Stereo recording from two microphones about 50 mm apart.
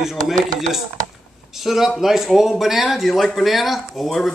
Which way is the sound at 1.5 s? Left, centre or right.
Centre.